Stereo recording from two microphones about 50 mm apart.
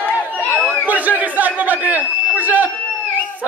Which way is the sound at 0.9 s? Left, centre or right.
Right.